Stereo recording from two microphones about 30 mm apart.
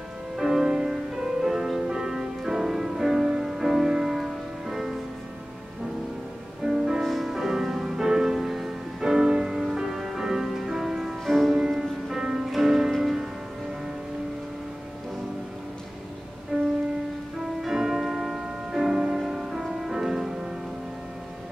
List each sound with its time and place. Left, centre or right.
0.4 s music: centre
6.6 s music: centre
7.0 s music: centre
7.2 s music: centre
11.2 s music: centre
12.2 s music: centre
16.5 s music: centre
17.6 s music: centre